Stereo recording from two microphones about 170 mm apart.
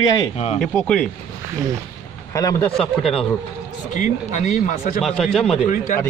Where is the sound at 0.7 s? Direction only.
5° left (ahead or behind).